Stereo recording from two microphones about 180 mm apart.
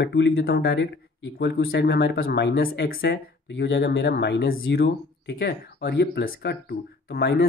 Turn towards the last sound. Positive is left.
turn(degrees=65)  # may be behind; listen again after turning